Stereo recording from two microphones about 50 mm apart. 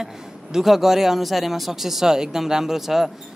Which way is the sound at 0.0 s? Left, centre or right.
Centre.